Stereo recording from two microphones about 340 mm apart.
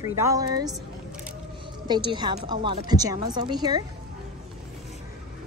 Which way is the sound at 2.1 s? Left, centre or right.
Centre.